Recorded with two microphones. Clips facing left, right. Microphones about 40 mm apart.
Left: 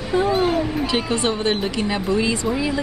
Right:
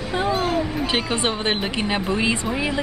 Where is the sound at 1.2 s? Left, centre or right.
Right.